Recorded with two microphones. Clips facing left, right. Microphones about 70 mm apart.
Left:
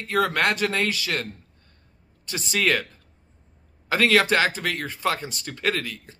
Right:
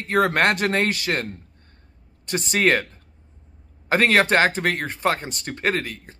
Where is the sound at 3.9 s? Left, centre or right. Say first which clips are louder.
Right 2 dB; right.